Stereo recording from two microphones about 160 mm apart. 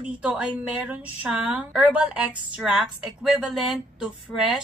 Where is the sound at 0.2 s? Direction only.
5° right (ahead or behind).